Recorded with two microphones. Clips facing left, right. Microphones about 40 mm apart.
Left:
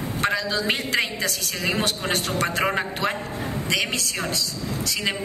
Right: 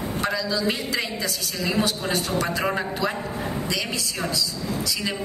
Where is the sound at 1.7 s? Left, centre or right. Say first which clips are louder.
Even; left.